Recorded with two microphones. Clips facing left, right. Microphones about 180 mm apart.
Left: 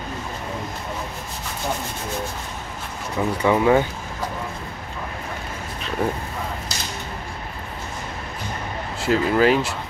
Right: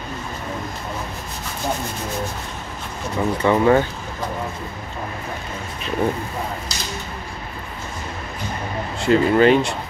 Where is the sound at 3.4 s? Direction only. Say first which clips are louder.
Right 1 dB; 10° left (ahead or behind).